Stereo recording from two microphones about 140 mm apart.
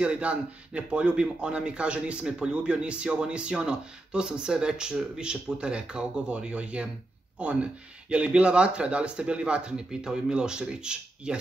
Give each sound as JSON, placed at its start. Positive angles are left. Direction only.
{"t": 0.0, "sound": "speech", "side_deg": -10}